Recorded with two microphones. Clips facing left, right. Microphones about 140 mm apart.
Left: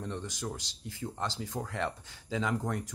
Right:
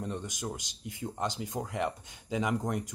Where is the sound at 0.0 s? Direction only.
15° right (ahead or behind).